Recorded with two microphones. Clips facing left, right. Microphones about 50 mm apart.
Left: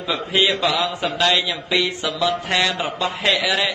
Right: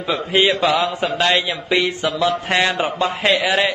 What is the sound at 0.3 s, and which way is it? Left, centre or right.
A man's voice, right.